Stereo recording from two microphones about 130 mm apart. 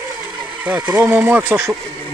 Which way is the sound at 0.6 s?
10° right (ahead or behind).